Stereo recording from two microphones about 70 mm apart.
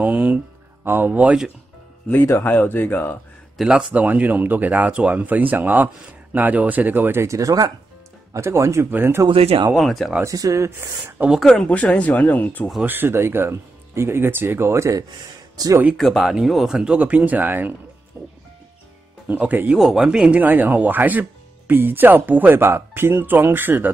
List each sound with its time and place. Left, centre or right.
0.0 s speech: right
2.0 s speech: left
3.6 s speech: centre
7.2 s speech: right
8.3 s speech: right
9.8 s speech: centre
10.2 s speech: right
11.6 s speech: centre
12.8 s speech: right
16.0 s speech: centre
17.0 s speech: right
19.2 s speech: right
19.8 s speech: centre; by 22.6 s right
22.6 s speech: right